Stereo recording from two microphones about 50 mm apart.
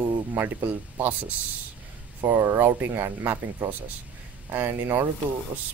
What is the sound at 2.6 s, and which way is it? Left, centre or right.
Speech, right.